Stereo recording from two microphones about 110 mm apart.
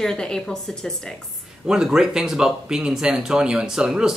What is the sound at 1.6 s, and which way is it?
Speech, 5° right (ahead or behind).